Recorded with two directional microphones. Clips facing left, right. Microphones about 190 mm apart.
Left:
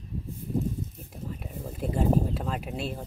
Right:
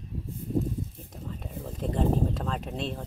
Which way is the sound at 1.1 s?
5° left (ahead or behind).